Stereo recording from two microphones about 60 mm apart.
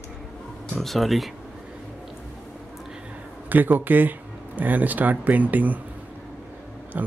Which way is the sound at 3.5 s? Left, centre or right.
Right.